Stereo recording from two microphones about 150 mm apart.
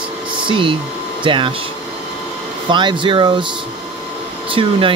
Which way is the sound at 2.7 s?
30° right (ahead or behind).